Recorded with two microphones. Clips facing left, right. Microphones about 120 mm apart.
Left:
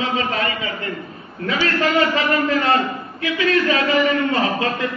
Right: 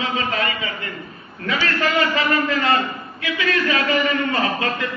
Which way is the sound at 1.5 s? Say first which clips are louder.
Left 2 dB; 30° left (ahead or behind).